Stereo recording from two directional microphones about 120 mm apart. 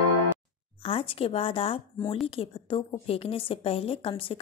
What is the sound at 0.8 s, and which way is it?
A woman's voice, 50° left (ahead or behind).